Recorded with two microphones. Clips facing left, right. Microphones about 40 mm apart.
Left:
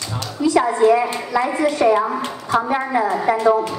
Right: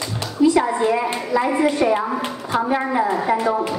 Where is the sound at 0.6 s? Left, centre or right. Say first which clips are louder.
Left 3 dB; centre.